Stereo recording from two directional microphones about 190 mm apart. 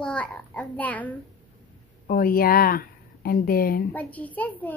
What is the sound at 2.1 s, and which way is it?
Speech, 50° left (ahead or behind).